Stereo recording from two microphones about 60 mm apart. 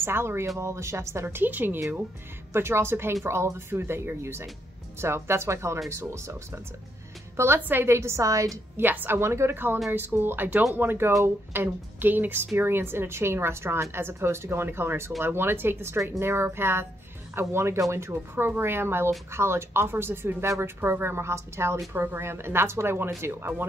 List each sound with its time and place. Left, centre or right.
0.0 s speech: right
1.4 s speech: right
2.5 s speech: right
8.7 s speech: right
9.2 s speech: right